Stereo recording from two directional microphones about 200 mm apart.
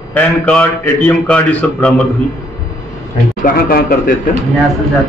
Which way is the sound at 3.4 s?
45° left (ahead or behind).